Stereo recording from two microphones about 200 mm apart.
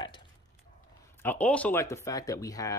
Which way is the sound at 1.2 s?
10° left (ahead or behind).